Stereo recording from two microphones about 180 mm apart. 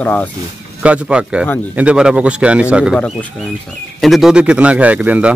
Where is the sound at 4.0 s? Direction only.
Centre (ahead or behind).